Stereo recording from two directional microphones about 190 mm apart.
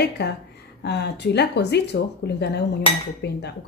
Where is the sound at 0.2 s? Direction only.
60° left (ahead or behind).